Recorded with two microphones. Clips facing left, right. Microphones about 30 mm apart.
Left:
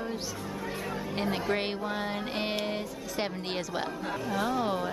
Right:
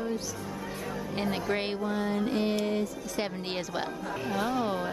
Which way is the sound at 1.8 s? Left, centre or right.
Left.